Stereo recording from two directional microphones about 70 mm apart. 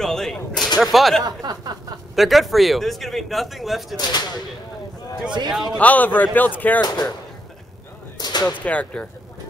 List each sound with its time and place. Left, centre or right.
0.0 s speech: centre
1.2 s speech: right
2.1 s speech: centre
3.9 s speech: left
5.5 s a man's voice: centre
5.8 s speech: left
6.8 s speech: left
8.2 s whip: left
8.5 s speech: centre